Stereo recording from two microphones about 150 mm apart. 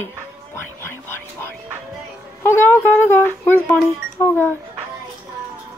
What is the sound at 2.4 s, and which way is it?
Speech, 15° left (ahead or behind).